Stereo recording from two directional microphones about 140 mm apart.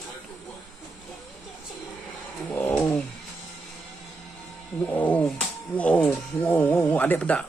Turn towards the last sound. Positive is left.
turn(degrees=10)  # may be behind; listen again after turning